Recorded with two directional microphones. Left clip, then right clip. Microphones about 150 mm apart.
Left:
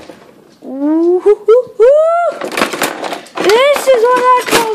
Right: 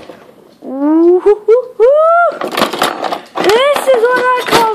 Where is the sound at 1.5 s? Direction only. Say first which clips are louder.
Left 2 dB; 20° left (ahead or behind).